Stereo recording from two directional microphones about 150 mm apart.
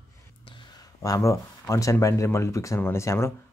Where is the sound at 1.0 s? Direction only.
20° left (ahead or behind).